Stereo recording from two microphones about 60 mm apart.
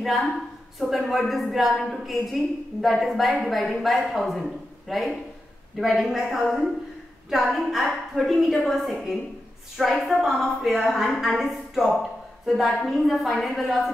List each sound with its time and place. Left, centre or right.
0.0 s a woman's voice: centre